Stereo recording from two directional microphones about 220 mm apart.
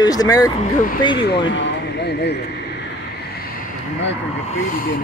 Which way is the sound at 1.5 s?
50° left (ahead or behind).